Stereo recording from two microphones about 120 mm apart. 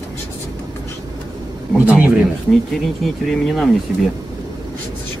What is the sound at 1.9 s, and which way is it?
Speech, 10° right (ahead or behind).